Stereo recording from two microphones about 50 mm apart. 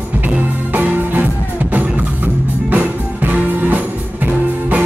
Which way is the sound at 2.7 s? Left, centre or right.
Right.